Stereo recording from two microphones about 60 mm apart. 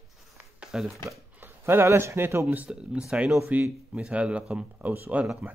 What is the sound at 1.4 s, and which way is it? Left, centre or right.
Speech, right.